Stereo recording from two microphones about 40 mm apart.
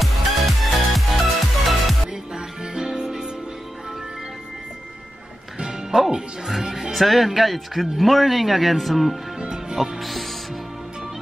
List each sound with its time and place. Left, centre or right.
0.0 s music: centre
2.3 s music: centre
5.6 s music: centre
6.1 s speech: centre
9.4 s music: right
9.8 s speech: centre